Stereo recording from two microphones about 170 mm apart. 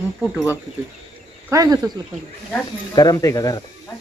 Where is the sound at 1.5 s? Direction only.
20° right (ahead or behind).